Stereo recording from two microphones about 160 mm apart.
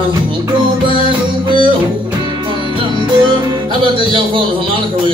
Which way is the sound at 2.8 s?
30° right (ahead or behind).